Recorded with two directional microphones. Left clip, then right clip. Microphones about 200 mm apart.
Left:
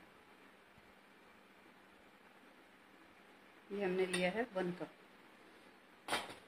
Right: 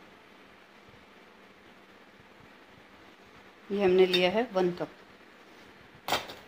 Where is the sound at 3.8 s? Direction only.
35° right (ahead or behind).